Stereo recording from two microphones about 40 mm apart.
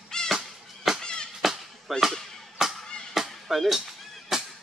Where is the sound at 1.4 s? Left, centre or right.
Centre.